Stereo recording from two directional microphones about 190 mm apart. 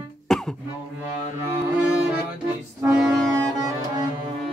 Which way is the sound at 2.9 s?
Centre (ahead or behind).